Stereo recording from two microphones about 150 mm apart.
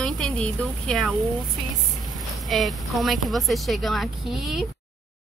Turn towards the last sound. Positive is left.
turn(degrees=0)  # may be behind; listen again after turning